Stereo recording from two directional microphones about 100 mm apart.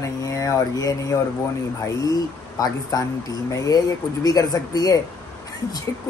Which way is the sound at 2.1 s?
40° left (ahead or behind).